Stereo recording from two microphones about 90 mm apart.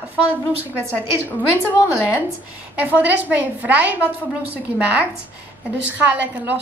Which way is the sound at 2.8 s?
20° right (ahead or behind).